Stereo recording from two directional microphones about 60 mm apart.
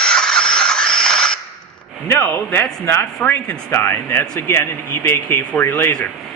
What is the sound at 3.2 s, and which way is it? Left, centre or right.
Speech, left.